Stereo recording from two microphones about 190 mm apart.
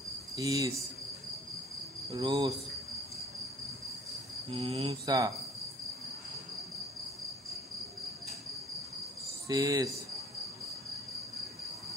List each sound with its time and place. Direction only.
0.4 s cricket: 15° right (ahead or behind)
2.0 s cricket: 25° right (ahead or behind)
4.5 s cricket: 30° right (ahead or behind)
5.0 s cricket: 20° right (ahead or behind)
9.5 s cricket: 20° right (ahead or behind)